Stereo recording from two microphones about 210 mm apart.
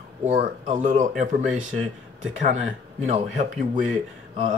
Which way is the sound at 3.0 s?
35° right (ahead or behind).